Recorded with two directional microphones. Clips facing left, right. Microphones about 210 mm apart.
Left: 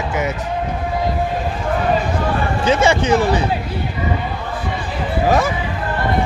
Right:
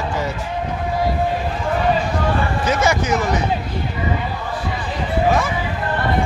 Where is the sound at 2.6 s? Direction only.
30° left (ahead or behind).